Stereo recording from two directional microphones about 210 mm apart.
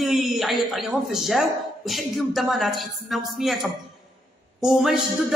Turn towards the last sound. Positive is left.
turn(degrees=0)  # may be behind; listen again after turning